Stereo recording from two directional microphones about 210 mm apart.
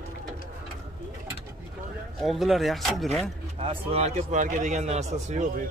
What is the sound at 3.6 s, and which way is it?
A man's voice, 25° right (ahead or behind).